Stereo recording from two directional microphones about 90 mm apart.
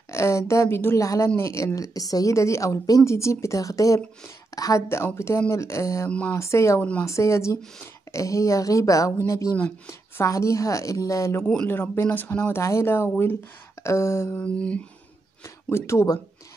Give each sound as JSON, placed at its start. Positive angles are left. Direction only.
{"t": 0.1, "sound": "a woman's voice", "side_deg": 30}
{"t": 1.0, "sound": "a woman's voice", "side_deg": 40}
{"t": 4.8, "sound": "a woman's voice", "side_deg": 30}
{"t": 6.0, "sound": "humming", "side_deg": 15}
{"t": 6.3, "sound": "a woman's voice", "side_deg": 30}
{"t": 6.8, "sound": "humming", "side_deg": 15}
{"t": 7.1, "sound": "a woman's voice", "side_deg": 35}
{"t": 11.6, "sound": "a woman's voice", "side_deg": 25}
{"t": 14.4, "sound": "humming", "side_deg": 15}
{"t": 15.4, "sound": "speech", "side_deg": 30}